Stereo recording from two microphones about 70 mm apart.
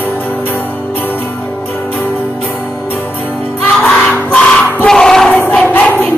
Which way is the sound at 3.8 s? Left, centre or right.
Left.